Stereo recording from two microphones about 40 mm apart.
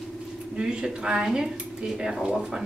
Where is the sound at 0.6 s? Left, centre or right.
Right.